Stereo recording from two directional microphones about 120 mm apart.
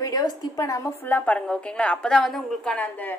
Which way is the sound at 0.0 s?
30° left (ahead or behind).